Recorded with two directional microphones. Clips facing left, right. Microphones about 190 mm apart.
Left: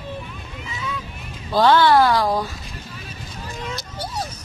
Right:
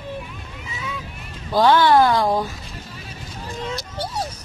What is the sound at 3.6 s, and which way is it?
Vehicle, 30° right (ahead or behind).